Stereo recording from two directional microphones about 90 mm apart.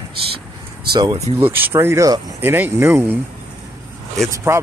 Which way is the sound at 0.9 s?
50° right (ahead or behind).